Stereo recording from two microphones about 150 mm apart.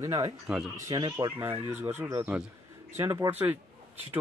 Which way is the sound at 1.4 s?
15° right (ahead or behind).